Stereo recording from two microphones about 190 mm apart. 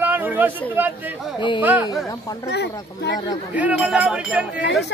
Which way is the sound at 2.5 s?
60° left (ahead or behind).